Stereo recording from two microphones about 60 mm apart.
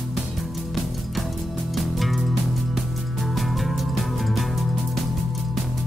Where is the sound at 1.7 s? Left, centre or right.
Centre.